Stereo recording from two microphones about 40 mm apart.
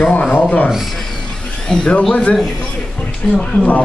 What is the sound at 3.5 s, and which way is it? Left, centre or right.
Speech, left.